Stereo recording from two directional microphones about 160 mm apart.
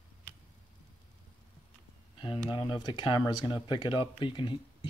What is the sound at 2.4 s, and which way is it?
Speech, 30° left (ahead or behind).